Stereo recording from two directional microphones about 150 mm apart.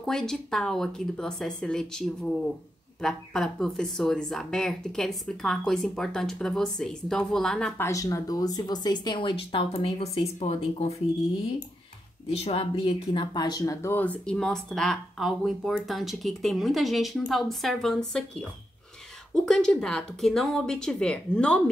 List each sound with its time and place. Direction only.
0.0 s speech: 5° left (ahead or behind)
7.8 s speech: 20° left (ahead or behind); by 11.0 s 45° left (ahead or behind)
12.3 s speech: 40° left (ahead or behind); by 21.6 s 5° left (ahead or behind)